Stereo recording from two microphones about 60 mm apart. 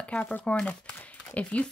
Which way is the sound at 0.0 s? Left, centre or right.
Left.